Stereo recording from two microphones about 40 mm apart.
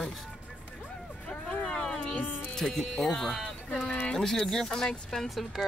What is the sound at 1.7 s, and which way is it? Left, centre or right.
Speech, left.